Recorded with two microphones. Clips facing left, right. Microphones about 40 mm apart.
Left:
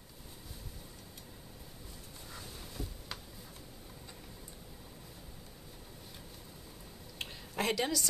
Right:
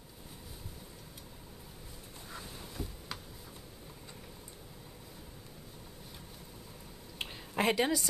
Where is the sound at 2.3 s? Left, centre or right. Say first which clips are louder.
Right 2 dB; centre.